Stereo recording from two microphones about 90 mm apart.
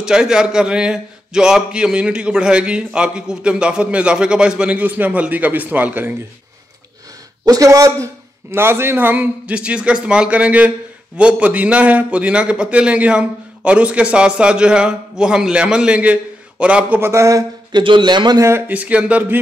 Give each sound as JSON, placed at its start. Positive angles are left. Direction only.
{"t": 0.0, "sound": "a man's voice", "side_deg": -10}
{"t": 7.4, "sound": "a man's voice", "side_deg": -40}
{"t": 17.0, "sound": "speech", "side_deg": -35}
{"t": 17.7, "sound": "a man's voice", "side_deg": -60}
{"t": 18.7, "sound": "a man's voice", "side_deg": -15}